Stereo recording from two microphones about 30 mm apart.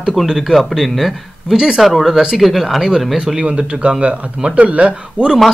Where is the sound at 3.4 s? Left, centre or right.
Right.